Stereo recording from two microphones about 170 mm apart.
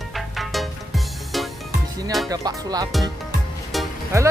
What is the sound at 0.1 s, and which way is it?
Music, centre (ahead or behind).